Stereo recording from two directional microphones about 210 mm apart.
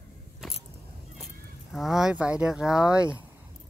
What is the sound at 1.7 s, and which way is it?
Speech, centre (ahead or behind).